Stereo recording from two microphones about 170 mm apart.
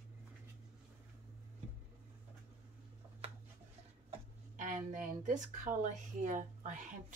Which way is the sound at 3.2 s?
35° right (ahead or behind).